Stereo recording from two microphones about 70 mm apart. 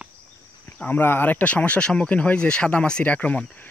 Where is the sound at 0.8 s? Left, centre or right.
Left.